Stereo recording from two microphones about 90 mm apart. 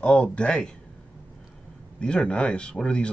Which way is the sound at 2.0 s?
10° left (ahead or behind).